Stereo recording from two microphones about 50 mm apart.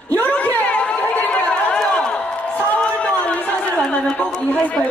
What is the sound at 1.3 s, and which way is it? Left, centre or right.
Run, left.